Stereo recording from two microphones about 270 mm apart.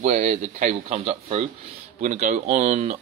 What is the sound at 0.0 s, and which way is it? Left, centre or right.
Speech, right.